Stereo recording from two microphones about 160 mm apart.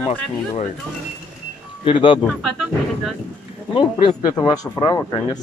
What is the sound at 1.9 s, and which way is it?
Speech, 30° left (ahead or behind).